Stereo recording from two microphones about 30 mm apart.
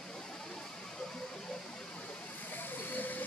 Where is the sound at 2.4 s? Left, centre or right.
Left.